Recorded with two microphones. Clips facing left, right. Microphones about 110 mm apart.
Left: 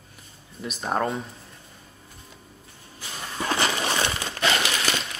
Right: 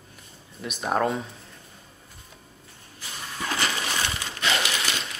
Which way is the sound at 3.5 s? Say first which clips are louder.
Left 3 dB; 30° left (ahead or behind).